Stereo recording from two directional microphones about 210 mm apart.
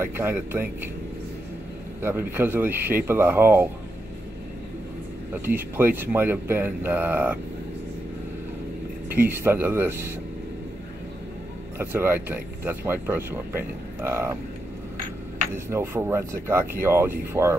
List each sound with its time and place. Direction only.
0.0 s speech: 10° right (ahead or behind)
2.0 s speech: 10° right (ahead or behind)
5.3 s speech: 10° right (ahead or behind)
9.1 s speech: 10° right (ahead or behind)
11.8 s speech: 10° right (ahead or behind)
15.5 s speech: 10° right (ahead or behind)